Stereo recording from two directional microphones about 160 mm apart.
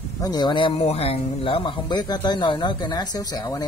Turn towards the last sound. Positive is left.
turn(degrees=25)  # may be behind; listen again after turning